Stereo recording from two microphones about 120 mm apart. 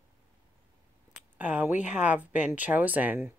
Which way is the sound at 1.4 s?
15° right (ahead or behind).